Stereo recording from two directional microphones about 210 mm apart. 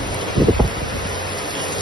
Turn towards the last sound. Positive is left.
turn(degrees=-20)  # may be behind; listen again after turning